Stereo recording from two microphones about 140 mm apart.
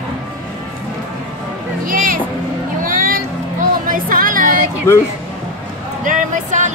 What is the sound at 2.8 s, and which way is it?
Vehicle, 80° right.